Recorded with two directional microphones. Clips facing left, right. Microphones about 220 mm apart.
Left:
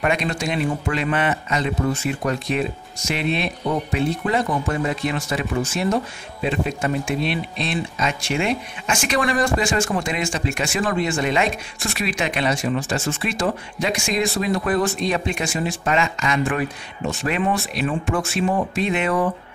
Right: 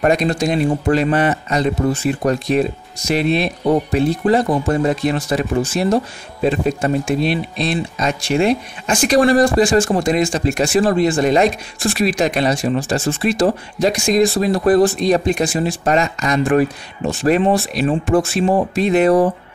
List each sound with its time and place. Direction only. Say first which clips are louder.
0.0 s speech: right 7 dB; 40° right (ahead or behind)